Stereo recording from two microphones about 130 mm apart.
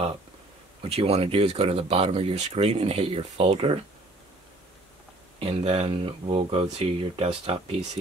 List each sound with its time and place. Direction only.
0.8 s speech: 50° right (ahead or behind)
5.4 s speech: 50° right (ahead or behind)